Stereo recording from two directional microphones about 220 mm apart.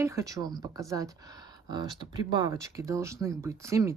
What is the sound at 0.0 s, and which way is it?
Speech, 15° right (ahead or behind).